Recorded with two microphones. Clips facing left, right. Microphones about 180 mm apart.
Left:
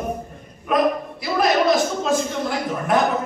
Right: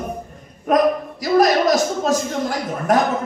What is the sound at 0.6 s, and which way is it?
A man's voice, 40° right (ahead or behind).